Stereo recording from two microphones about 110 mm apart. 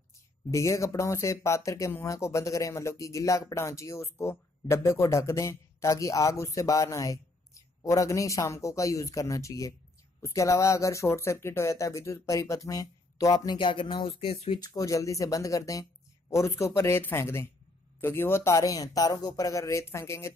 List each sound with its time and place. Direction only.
0.5 s speech: 30° left (ahead or behind); by 14.6 s 55° left (ahead or behind)
14.6 s speech: 35° left (ahead or behind)